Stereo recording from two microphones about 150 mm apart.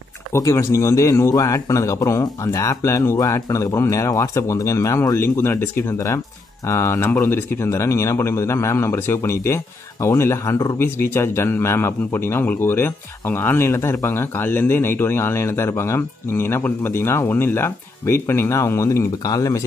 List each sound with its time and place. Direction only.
0.3 s speech: 20° left (ahead or behind)